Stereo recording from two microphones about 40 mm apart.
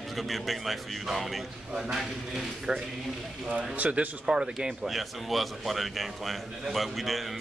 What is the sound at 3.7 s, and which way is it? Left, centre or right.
Speech, right.